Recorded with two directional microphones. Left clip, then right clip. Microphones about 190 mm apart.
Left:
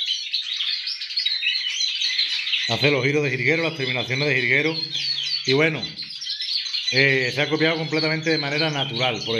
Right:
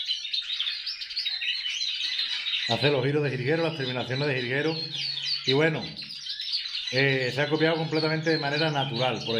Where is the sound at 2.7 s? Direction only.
15° left (ahead or behind).